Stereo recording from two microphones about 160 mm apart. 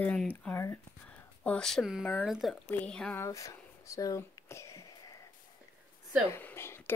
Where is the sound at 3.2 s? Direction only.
20° left (ahead or behind).